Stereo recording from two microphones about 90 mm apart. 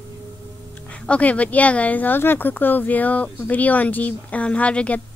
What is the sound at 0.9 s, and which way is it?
Speech, 15° left (ahead or behind).